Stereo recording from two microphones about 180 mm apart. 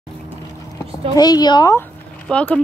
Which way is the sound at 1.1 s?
20° left (ahead or behind).